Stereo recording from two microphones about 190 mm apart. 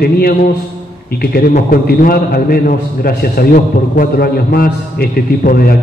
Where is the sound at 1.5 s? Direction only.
45° left (ahead or behind).